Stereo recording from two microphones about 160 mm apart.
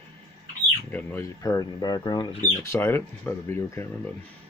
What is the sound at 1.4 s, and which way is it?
Speech, 20° left (ahead or behind).